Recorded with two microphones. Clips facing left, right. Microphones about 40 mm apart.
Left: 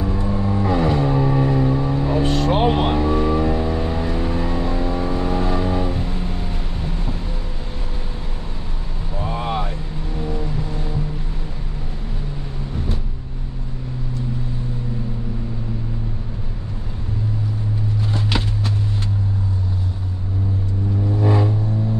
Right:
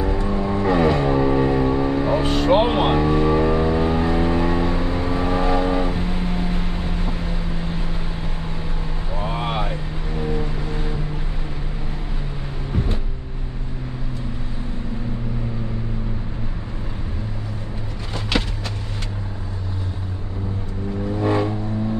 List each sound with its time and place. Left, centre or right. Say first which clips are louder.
0.3 s vehicle: right 1 dB; right
9.1 s vehicle: left 1 dB; centre
21.2 s vehicle: even; right